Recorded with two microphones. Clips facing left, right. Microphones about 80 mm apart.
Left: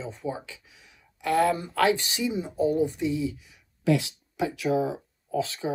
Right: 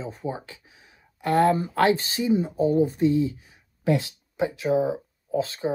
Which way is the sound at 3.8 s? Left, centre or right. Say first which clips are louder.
Even; right.